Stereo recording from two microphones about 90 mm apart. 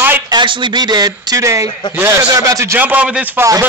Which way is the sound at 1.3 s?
35° right (ahead or behind).